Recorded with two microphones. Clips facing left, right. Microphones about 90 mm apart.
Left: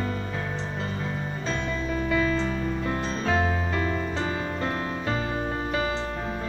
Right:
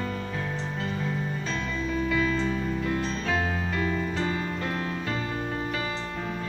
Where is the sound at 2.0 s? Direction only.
30° left (ahead or behind).